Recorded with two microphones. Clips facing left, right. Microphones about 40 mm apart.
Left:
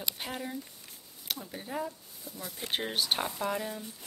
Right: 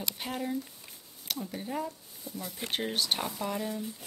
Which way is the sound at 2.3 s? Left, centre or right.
Centre.